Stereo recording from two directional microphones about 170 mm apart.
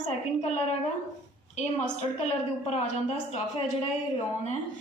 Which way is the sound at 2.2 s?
40° left (ahead or behind).